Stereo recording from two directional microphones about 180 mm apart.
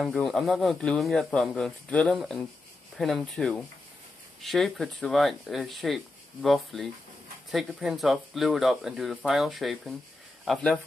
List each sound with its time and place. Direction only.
0.0 s speech: centre (ahead or behind)